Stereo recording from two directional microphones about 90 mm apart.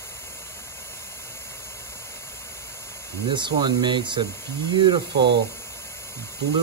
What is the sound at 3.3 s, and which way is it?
Speech, 60° right (ahead or behind).